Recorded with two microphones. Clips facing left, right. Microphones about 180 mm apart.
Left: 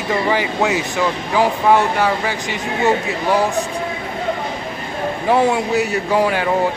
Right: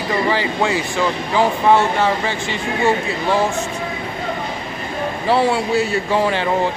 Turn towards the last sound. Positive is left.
turn(degrees=10)  # may be behind; listen again after turning